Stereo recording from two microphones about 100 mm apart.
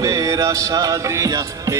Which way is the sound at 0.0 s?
35° right (ahead or behind).